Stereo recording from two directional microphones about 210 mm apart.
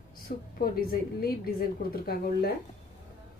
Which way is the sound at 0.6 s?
45° left (ahead or behind).